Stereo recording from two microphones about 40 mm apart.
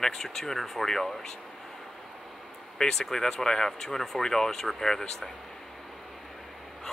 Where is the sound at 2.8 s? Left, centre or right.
Centre.